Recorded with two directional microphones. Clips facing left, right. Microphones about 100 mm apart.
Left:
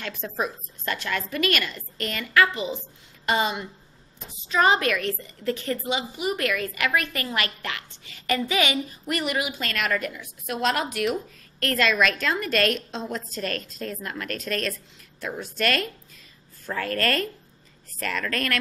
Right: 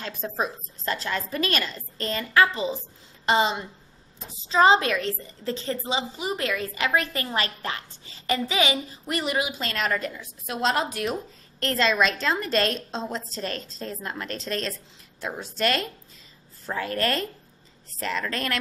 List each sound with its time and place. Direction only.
0.4 s a woman's voice: 30° right (ahead or behind)